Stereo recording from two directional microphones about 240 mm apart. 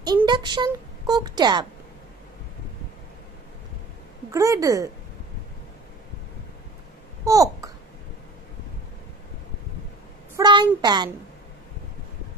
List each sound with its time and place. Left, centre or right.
0.0 s speech: centre
4.3 s speech: centre
7.2 s a child's voice: centre
10.3 s speech: centre